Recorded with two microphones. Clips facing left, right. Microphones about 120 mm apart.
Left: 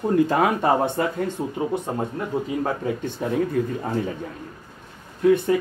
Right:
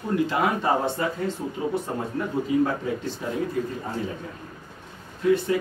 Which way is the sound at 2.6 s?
55° left (ahead or behind).